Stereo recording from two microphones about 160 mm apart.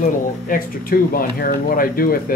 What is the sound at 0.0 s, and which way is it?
Speech, 60° left (ahead or behind).